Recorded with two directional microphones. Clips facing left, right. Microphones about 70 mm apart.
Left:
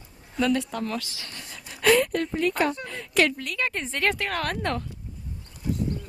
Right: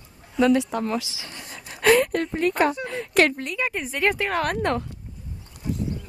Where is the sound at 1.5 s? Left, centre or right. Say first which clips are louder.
Right 2 dB; right.